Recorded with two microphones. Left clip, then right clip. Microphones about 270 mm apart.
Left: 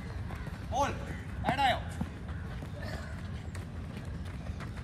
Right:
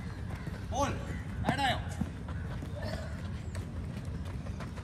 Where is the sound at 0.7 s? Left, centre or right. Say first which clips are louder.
Left 2 dB; left.